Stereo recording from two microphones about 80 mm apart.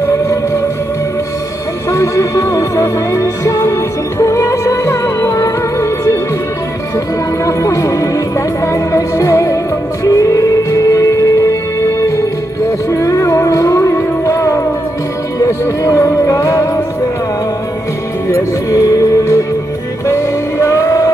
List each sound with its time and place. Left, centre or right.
1.9 s music: left
7.4 s music: left
12.9 s music: left
18.3 s music: left